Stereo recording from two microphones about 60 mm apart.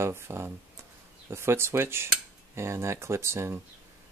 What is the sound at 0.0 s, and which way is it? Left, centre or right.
Speech, right.